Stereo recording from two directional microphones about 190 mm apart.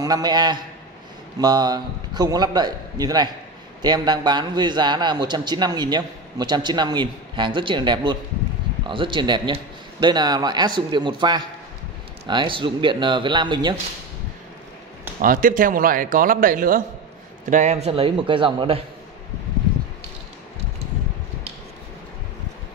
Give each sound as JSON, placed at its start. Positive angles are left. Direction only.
{"t": 0.0, "sound": "a man's voice", "side_deg": -20}
{"t": 15.2, "sound": "a man's voice", "side_deg": -45}